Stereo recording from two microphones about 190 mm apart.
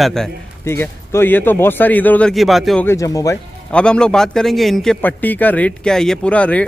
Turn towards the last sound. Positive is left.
turn(degrees=5)  # may be behind; listen again after turning